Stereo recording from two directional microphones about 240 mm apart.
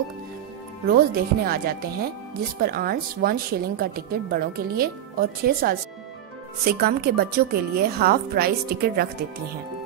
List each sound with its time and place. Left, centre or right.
0.8 s a woman's voice: right